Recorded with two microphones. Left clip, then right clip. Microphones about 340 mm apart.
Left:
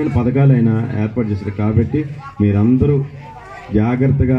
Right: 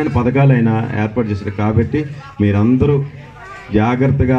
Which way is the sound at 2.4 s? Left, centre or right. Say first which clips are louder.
Right 1 dB; right.